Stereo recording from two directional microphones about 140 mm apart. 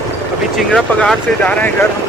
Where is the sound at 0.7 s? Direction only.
10° left (ahead or behind).